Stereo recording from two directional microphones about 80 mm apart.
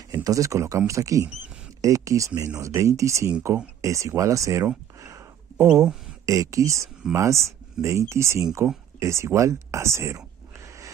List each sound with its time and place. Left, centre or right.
0.1 s speech: right
5.0 s a sound: right
6.2 s speech: right